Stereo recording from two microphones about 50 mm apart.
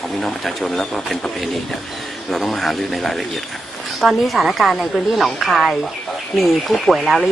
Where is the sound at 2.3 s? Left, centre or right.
Centre.